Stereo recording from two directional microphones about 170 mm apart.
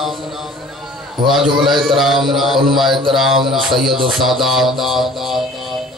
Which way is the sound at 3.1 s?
Centre (ahead or behind).